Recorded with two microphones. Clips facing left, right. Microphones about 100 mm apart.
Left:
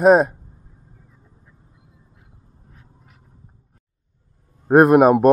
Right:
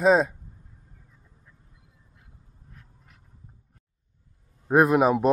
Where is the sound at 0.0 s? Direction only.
55° left (ahead or behind).